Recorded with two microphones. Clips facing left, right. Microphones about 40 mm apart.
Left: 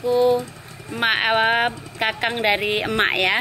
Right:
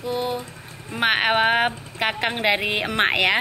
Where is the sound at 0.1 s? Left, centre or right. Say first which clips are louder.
Left 9 dB; right.